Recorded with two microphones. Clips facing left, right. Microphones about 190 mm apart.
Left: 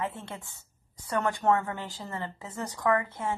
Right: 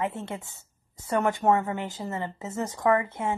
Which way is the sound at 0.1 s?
20° right (ahead or behind).